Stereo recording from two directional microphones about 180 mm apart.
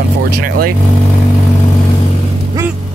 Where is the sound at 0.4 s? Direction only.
55° right (ahead or behind).